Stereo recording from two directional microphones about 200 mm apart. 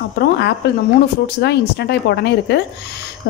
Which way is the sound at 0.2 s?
55° left (ahead or behind).